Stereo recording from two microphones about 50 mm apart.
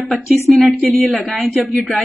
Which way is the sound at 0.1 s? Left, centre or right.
Centre.